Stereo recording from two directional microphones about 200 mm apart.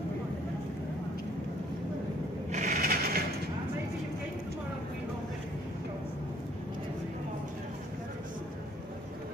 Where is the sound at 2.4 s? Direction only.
40° right (ahead or behind).